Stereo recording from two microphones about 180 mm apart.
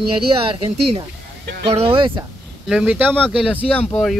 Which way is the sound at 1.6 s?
30° right (ahead or behind).